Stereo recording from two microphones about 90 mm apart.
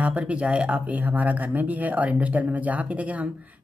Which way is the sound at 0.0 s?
15° right (ahead or behind).